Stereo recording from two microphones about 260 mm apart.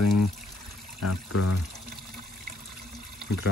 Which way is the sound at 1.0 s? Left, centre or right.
Left.